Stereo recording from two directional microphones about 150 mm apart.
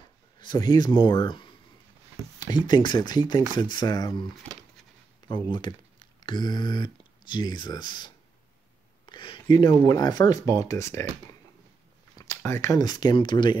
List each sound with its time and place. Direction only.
0.4 s speech: 30° left (ahead or behind)
5.3 s speech: 30° left (ahead or behind)
9.1 s speech: 35° left (ahead or behind)
12.2 s speech: 20° left (ahead or behind)